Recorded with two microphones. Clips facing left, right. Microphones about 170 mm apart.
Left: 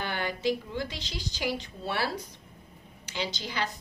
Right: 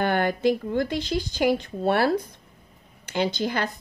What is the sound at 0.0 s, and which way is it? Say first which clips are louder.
A woman's voice: right 8 dB; 50° right (ahead or behind).